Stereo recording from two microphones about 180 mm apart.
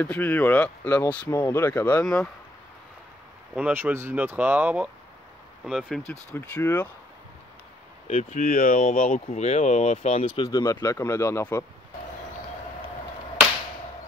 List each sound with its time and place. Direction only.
0.0 s speech: 10° left (ahead or behind)
3.5 s speech: 10° right (ahead or behind)
6.3 s speech: 15° left (ahead or behind)
8.1 s speech: 40° left (ahead or behind)
10.4 s speech: 20° left (ahead or behind)